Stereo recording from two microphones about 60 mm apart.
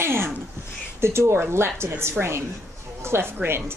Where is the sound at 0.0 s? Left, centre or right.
Right.